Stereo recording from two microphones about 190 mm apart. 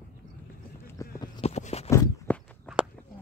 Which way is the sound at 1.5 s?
35° left (ahead or behind).